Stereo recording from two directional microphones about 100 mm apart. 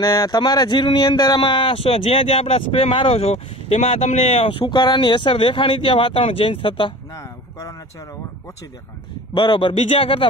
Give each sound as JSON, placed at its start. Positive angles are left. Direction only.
{"t": 0.0, "sound": "speech", "side_deg": 35}
{"t": 1.0, "sound": "speech", "side_deg": 40}
{"t": 7.2, "sound": "a sound", "side_deg": 30}
{"t": 9.3, "sound": "speech", "side_deg": 50}
{"t": 9.8, "sound": "speech", "side_deg": 70}